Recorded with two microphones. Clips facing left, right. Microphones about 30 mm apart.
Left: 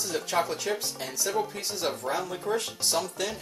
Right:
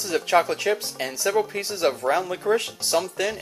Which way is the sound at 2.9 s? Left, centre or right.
Centre.